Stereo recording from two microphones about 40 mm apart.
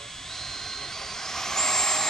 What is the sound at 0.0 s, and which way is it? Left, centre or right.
Jet engine, centre.